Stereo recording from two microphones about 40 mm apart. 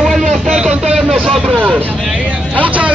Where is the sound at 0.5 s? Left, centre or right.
Centre.